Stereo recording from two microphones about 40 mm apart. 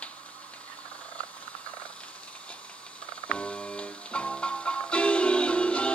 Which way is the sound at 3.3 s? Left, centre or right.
Left.